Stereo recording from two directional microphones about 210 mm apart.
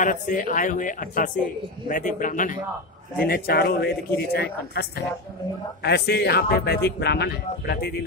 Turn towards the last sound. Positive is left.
turn(degrees=50)  # may be behind; listen again after turning